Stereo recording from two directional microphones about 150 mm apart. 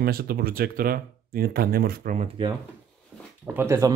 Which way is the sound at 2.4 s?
35° right (ahead or behind).